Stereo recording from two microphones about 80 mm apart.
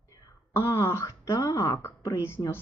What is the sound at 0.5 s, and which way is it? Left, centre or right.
Speech, left.